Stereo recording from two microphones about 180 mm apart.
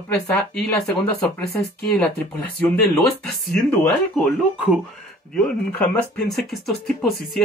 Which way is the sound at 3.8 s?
Centre (ahead or behind).